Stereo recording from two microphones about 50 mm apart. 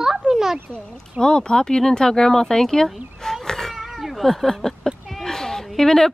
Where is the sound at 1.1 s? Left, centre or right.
Centre.